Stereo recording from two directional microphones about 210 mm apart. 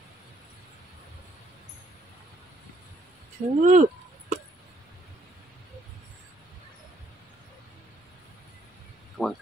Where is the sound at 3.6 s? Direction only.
35° right (ahead or behind).